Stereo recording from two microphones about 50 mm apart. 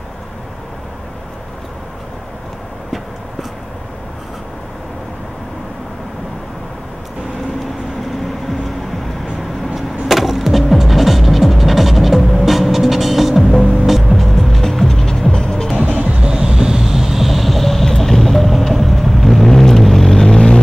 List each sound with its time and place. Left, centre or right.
10.0 s music: centre
16.0 s music: right
16.3 s vehicle: centre